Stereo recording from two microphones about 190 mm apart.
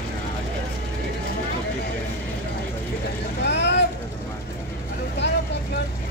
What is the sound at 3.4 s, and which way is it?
Vehicle, 65° left (ahead or behind).